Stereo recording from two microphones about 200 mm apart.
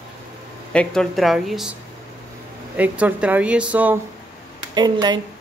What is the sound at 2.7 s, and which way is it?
A woman's voice, 5° right (ahead or behind).